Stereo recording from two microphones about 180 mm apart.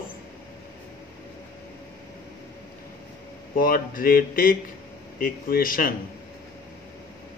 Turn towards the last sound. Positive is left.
turn(degrees=50)  # may be behind; listen again after turning